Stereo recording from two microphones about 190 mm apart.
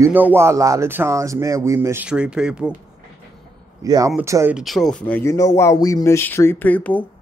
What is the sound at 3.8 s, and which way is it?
Speech, 20° right (ahead or behind).